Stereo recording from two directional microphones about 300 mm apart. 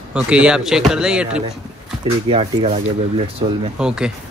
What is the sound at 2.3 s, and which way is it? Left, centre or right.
Speech, centre.